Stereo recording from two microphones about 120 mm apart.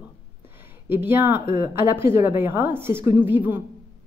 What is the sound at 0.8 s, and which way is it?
A woman's voice, 20° right (ahead or behind).